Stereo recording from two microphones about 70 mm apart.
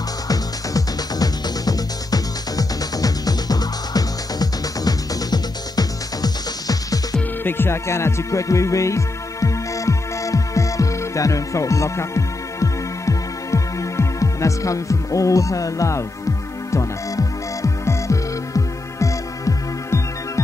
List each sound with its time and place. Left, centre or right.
0.3 s music: left
7.4 s music: left